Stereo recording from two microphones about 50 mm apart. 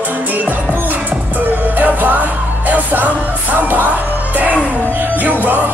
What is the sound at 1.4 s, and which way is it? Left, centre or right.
Music, right.